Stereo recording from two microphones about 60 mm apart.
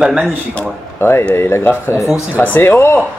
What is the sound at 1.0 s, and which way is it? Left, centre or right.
Speech, left.